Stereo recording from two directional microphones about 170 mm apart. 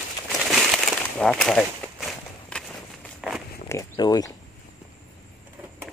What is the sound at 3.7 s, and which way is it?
Speech, 20° left (ahead or behind).